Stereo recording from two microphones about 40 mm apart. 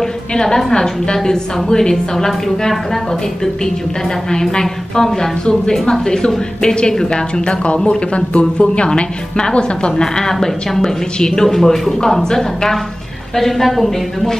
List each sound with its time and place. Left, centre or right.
0.3 s a woman's voice: centre
4.3 s a woman's voice: centre